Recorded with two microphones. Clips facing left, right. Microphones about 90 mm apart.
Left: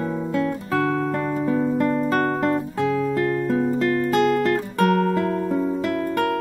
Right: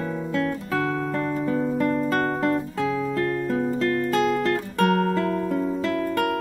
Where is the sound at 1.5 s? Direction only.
10° left (ahead or behind).